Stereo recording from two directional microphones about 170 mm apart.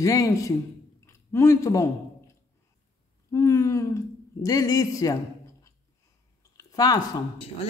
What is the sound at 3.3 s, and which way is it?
Speech, 15° left (ahead or behind).